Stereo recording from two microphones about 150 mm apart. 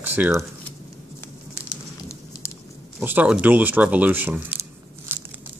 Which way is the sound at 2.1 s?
20° left (ahead or behind).